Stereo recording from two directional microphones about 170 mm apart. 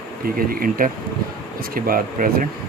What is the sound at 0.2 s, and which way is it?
Speech, 60° right (ahead or behind).